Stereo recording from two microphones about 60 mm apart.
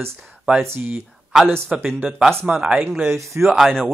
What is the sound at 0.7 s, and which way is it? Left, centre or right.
Speech, right.